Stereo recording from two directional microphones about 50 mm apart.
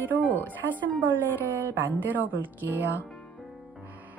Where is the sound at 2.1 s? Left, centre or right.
Right.